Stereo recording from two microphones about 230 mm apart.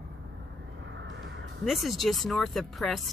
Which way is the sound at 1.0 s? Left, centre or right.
Right.